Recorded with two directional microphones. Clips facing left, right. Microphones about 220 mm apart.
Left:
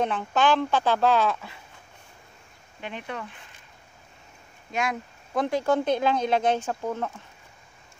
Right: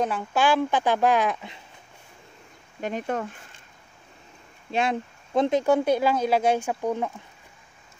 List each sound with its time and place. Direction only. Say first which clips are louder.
0.0 s speech: even; 5° right (ahead or behind)
2.8 s speech: right 7 dB; 40° right (ahead or behind)
4.6 s speech: right 4 dB; 30° right (ahead or behind); by 7.1 s 15° right (ahead or behind)